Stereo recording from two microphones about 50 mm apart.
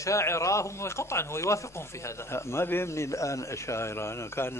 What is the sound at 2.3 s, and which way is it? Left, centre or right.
Speech, left.